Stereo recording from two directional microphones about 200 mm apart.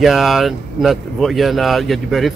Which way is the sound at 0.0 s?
Centre (ahead or behind).